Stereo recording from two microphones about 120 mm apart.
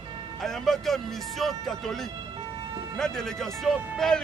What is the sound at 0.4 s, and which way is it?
Speech, 5° left (ahead or behind).